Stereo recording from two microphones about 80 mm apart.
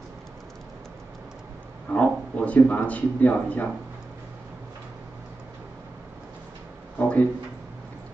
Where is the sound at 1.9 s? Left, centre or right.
Centre.